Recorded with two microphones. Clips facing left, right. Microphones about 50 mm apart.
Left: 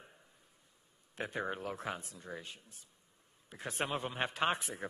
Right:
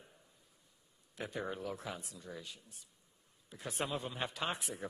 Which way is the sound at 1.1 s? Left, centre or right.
Left.